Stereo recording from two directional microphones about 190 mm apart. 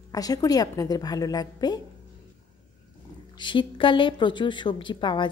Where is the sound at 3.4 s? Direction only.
25° left (ahead or behind).